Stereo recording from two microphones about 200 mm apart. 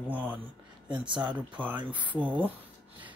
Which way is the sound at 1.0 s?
25° right (ahead or behind).